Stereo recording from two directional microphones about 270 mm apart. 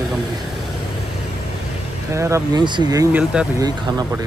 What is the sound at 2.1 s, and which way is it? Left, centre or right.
Speech, centre.